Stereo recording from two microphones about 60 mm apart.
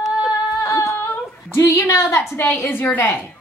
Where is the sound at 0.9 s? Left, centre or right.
Left.